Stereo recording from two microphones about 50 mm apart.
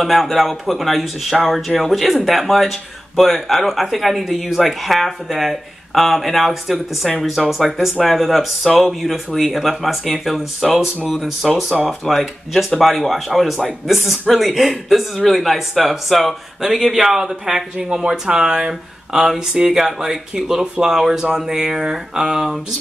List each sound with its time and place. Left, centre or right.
0.0 s speech: centre
19.8 s speech: centre